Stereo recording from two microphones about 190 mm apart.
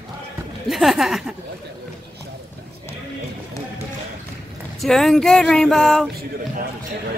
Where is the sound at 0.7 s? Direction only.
Centre (ahead or behind).